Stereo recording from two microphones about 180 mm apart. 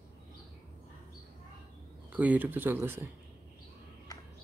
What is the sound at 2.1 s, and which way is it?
Speech, 10° right (ahead or behind).